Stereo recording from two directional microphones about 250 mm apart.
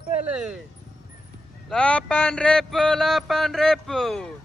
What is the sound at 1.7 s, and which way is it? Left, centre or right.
Mantra, centre.